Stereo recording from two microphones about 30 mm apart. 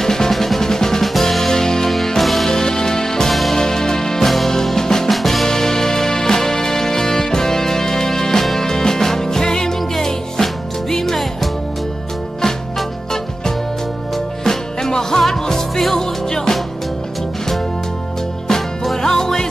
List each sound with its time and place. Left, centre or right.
0.0 s drum: centre
1.5 s music: centre
2.1 s music: centre
2.5 s music: centre
5.1 s music: centre
5.5 s music: centre
14.1 s music: centre
18.9 s music: centre